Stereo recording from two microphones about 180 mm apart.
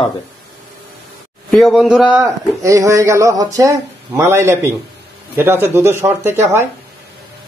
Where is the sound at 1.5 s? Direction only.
Centre (ahead or behind).